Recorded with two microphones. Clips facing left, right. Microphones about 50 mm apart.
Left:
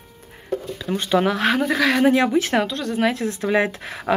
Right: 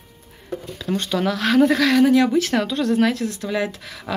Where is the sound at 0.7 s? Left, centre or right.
Centre.